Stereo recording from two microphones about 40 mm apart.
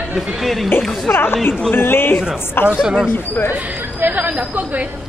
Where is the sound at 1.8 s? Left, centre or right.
Left.